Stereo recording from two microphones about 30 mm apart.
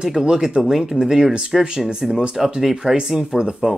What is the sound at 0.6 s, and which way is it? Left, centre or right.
Speech, centre.